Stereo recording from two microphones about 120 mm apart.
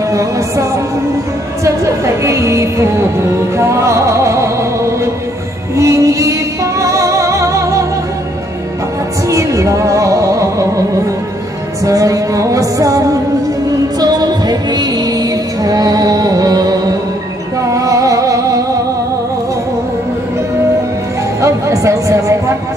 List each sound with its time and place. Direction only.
0.1 s music: 25° right (ahead or behind)
5.8 s music: 25° right (ahead or behind)
9.3 s music: 25° right (ahead or behind)
11.8 s music: 25° right (ahead or behind)
21.4 s music: 25° right (ahead or behind)